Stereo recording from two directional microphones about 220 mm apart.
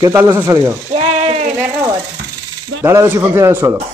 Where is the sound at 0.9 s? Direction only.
25° right (ahead or behind).